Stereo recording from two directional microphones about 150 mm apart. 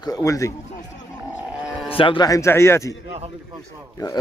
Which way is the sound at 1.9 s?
35° left (ahead or behind).